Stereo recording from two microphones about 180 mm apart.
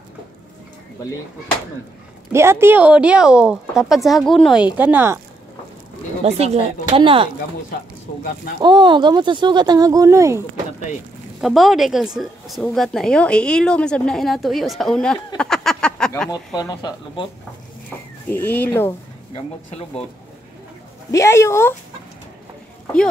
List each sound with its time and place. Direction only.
2.3 s a woman's voice: 15° right (ahead or behind)
4.7 s speech: 10° right (ahead or behind)
6.2 s speech: 35° right (ahead or behind)
8.5 s speech: 25° right (ahead or behind)
11.4 s a woman's voice: centre (ahead or behind)
16.3 s speech: 20° left (ahead or behind)
17.8 s speech: 10° left (ahead or behind)
19.3 s speech: 35° left (ahead or behind)
21.1 s speech: 15° left (ahead or behind)